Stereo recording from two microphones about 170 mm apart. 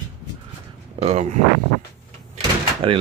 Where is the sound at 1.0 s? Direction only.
40° right (ahead or behind).